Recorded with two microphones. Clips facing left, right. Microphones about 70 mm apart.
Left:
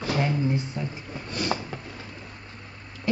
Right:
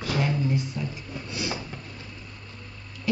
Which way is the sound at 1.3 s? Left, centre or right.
Left.